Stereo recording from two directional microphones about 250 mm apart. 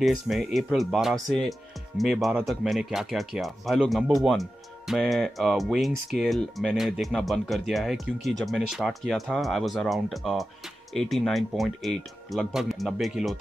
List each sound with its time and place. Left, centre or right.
0.0 s speech: centre